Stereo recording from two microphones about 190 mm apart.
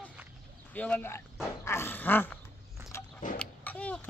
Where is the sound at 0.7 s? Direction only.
10° left (ahead or behind).